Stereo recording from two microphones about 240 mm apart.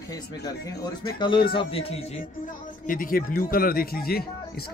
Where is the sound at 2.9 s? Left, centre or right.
Left.